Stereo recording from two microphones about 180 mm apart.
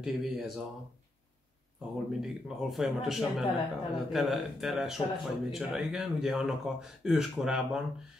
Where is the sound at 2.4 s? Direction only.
Centre (ahead or behind).